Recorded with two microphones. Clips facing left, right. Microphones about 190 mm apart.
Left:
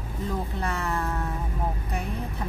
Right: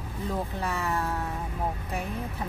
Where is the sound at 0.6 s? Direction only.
5° right (ahead or behind).